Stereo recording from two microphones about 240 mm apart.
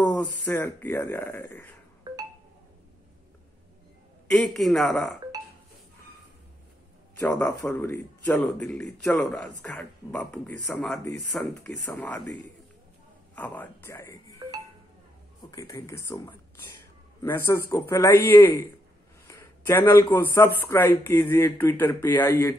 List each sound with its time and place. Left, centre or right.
0.0 s a sound: centre
0.5 s speech: centre
2.1 s a sound: centre
4.3 s a man's voice: centre
7.2 s a man's voice: centre
15.5 s speech: centre
17.5 s speech: centre